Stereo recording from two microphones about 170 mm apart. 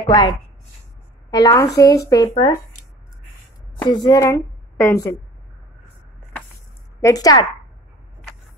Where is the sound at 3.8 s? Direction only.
25° left (ahead or behind).